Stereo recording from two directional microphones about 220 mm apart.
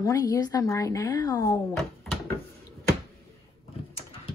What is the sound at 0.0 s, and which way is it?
A woman's voice, 15° left (ahead or behind).